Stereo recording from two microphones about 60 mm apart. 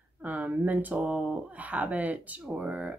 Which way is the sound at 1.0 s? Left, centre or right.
Centre.